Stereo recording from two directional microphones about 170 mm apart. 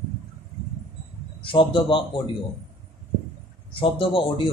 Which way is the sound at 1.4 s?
30° left (ahead or behind).